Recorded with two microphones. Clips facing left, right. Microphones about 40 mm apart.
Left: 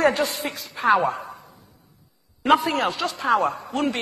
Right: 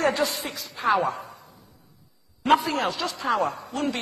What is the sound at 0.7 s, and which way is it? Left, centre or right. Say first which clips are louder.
Speech: left 3 dB; left.